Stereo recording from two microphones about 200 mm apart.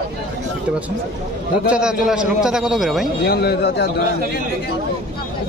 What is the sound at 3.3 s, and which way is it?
Speech, 55° left (ahead or behind).